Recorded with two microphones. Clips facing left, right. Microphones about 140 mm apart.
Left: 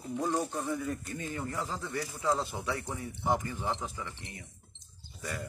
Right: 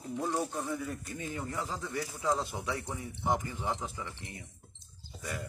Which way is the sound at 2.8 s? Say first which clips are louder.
Left 1 dB; centre (ahead or behind).